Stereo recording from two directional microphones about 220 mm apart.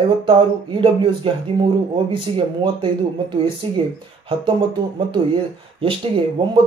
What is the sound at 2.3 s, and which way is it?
Speech, 25° right (ahead or behind).